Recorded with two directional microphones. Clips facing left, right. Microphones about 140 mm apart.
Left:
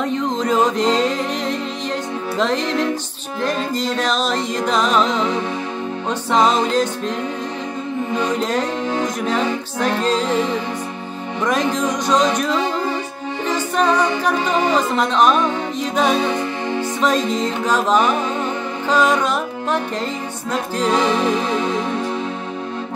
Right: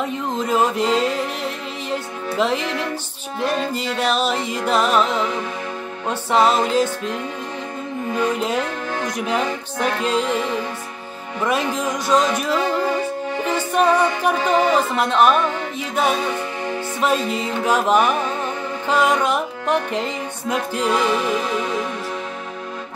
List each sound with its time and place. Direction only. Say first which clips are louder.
0.0 s music: left 3 dB; 5° right (ahead or behind)
8.4 s music: left 2 dB; 10° right (ahead or behind)
11.4 s music: left 2 dB; 10° right (ahead or behind)
20.9 s music: left 3 dB; 25° left (ahead or behind)